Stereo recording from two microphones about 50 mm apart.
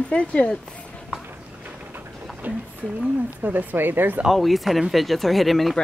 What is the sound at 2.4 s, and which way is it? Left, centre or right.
Speech, right.